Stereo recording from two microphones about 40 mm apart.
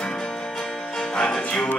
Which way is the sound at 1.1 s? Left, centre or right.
Left.